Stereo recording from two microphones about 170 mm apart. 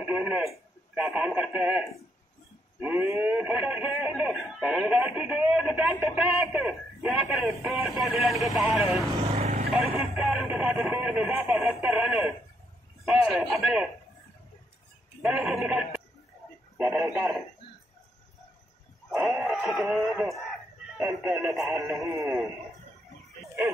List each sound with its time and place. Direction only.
0.0 s telephone: 10° right (ahead or behind)
0.9 s speech: 10° right (ahead or behind)
9.2 s vehicle: 40° right (ahead or behind)
9.9 s speech: 5° right (ahead or behind)
15.2 s speech: centre (ahead or behind)
19.0 s a sound: centre (ahead or behind)
19.4 s speech: centre (ahead or behind)
21.0 s speech: 15° right (ahead or behind)
21.5 s speech: centre (ahead or behind)
22.0 s a man's voice: 20° right (ahead or behind)